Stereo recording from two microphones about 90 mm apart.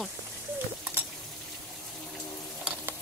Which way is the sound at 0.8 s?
20° right (ahead or behind).